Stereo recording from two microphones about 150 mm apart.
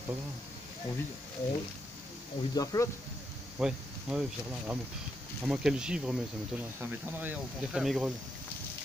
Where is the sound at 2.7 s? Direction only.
25° left (ahead or behind).